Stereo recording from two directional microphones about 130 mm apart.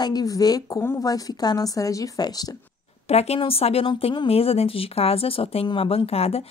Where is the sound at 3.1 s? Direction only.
55° left (ahead or behind).